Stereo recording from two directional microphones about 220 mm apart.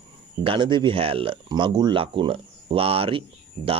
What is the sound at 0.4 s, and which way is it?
Speech, 25° right (ahead or behind).